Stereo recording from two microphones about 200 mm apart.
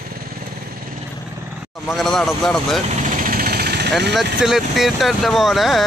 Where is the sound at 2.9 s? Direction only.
40° right (ahead or behind).